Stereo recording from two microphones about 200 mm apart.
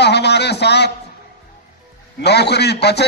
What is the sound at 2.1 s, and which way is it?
Speech, 55° left (ahead or behind).